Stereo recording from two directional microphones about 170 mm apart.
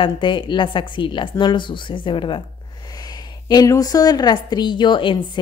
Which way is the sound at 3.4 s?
20° left (ahead or behind).